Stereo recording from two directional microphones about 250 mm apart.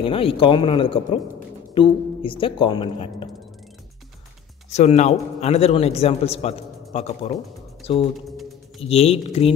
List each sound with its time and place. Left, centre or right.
0.0 s a man's voice: left
4.7 s a man's voice: left